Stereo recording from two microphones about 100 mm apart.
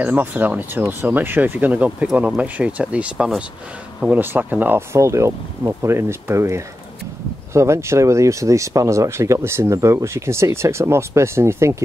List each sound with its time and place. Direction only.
0.0 s speech: 15° right (ahead or behind)
4.0 s speech: 20° right (ahead or behind)